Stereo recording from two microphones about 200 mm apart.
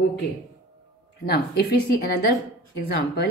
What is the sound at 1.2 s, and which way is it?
A woman's voice, 50° left (ahead or behind).